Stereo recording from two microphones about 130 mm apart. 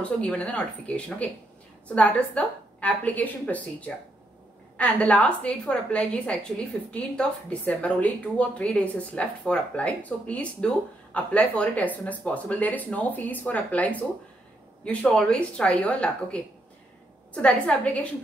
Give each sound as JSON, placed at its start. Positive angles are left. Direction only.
{"t": 0.0, "sound": "a woman's voice", "side_deg": 10}